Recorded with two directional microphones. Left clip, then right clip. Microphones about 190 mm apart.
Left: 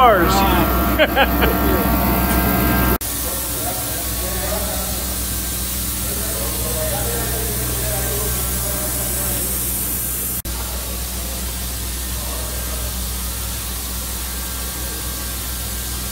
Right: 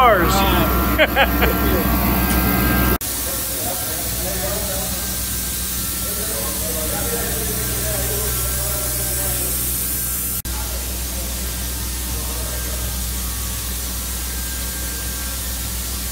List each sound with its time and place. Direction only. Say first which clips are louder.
0.0 s speech: left 1 dB; 15° left (ahead or behind)
0.4 s speech: left 1 dB; 5° right (ahead or behind)
0.8 s speech: even; 15° left (ahead or behind)
1.4 s vehicle: left 1 dB; 5° left (ahead or behind)